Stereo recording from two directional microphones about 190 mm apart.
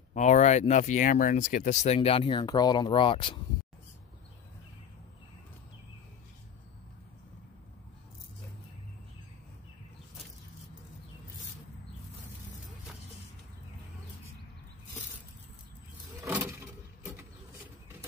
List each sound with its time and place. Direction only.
0.1 s speech: 40° left (ahead or behind)
16.2 s vehicle: 10° right (ahead or behind)